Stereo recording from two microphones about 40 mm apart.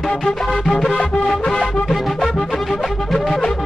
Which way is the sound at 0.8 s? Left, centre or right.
Centre.